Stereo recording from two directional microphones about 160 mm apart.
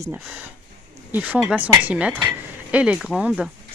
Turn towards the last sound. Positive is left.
turn(degrees=-5)  # may be behind; listen again after turning